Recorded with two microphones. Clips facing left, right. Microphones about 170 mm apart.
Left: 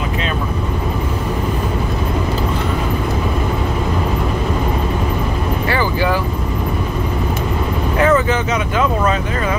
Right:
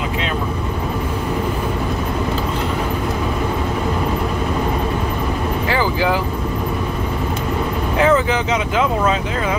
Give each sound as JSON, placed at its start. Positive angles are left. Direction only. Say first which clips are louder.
{"t": 5.7, "sound": "vehicle", "louder": "even", "side_deg": -15}
{"t": 8.0, "sound": "vehicle", "louder": "left 1 dB", "side_deg": -10}